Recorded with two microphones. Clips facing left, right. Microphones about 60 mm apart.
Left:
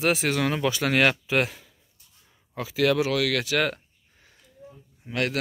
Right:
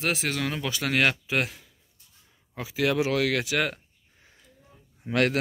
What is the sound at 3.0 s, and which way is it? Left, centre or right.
Speech, right.